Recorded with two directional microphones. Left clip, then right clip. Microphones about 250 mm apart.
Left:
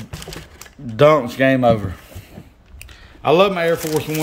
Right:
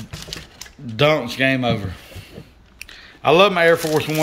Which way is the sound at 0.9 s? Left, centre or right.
Centre.